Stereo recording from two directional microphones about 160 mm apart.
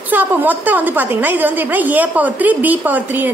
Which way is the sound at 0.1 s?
10° right (ahead or behind).